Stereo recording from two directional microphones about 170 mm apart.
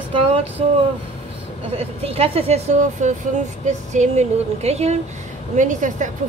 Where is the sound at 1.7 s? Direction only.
35° right (ahead or behind).